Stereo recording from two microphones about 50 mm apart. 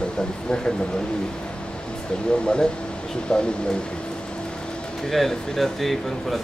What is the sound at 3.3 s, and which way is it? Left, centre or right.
Speech, centre.